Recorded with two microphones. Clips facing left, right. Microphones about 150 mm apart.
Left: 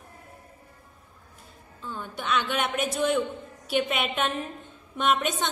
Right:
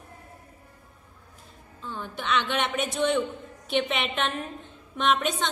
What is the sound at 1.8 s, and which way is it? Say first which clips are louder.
A woman's voice: even; centre (ahead or behind).